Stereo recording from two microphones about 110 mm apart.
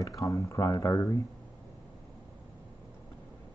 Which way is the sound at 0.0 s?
30° left (ahead or behind).